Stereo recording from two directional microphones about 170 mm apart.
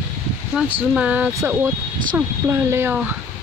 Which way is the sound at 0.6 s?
5° right (ahead or behind).